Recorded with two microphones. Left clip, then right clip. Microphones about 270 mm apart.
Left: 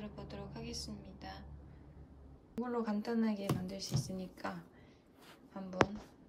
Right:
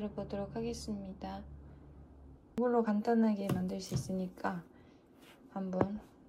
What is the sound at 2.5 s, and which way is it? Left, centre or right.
A woman's voice, centre.